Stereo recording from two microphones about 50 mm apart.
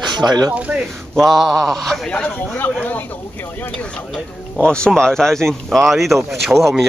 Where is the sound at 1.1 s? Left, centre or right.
Centre.